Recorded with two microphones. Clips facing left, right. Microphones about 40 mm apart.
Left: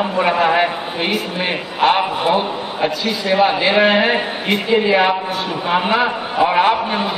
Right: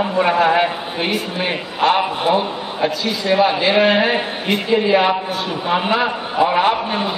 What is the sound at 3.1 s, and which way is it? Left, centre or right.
A man's voice, centre.